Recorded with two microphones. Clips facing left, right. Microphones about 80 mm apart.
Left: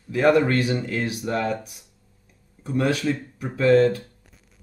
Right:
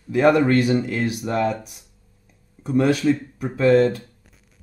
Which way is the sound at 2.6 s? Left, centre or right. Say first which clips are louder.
Right 5 dB; right.